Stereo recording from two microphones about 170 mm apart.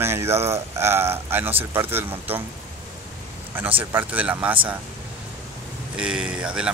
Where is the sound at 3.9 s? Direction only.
10° right (ahead or behind).